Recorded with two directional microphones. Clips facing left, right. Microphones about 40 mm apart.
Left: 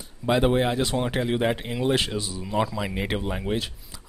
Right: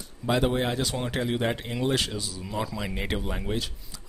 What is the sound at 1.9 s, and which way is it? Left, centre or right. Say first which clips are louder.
Speech: left 3 dB; left.